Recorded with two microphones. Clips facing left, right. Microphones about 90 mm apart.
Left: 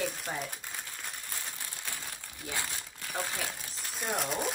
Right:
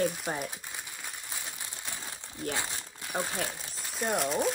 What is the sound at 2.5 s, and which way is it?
Speech, 20° right (ahead or behind).